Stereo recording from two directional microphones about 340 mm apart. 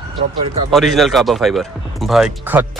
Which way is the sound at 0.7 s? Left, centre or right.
Centre.